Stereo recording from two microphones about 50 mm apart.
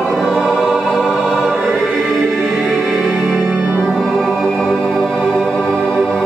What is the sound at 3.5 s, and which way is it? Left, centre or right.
Music, right.